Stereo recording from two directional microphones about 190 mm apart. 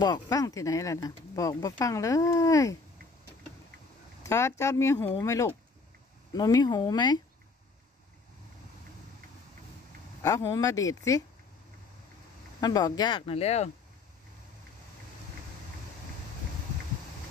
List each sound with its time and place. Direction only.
0.0 s speech: 20° left (ahead or behind)
4.2 s speech: 15° left (ahead or behind)
10.2 s speech: 20° left (ahead or behind)
12.5 s speech: 20° left (ahead or behind)